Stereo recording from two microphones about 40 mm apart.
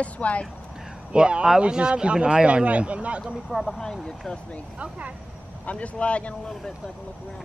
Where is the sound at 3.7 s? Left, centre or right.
Centre.